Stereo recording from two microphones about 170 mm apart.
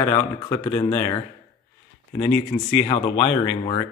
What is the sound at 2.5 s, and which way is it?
Speech, 15° left (ahead or behind).